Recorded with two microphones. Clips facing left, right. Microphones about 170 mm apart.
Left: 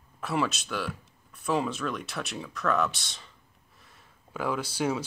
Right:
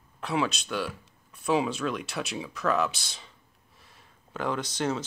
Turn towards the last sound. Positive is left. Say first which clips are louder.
# even
turn(degrees=10)  # may be behind; listen again after turning